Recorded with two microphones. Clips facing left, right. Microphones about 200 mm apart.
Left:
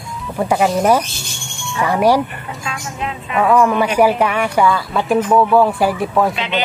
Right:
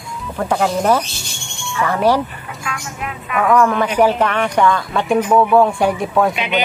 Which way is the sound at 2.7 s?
25° left (ahead or behind).